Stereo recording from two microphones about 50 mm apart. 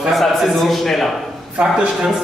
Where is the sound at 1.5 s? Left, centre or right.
Centre.